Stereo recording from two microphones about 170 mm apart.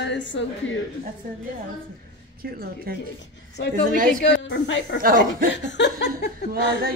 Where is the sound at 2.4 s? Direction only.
60° right (ahead or behind).